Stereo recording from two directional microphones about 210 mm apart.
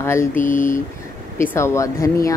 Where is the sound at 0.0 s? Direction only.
10° left (ahead or behind).